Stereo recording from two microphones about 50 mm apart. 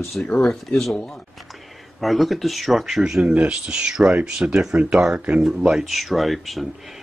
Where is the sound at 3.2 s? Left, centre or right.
Right.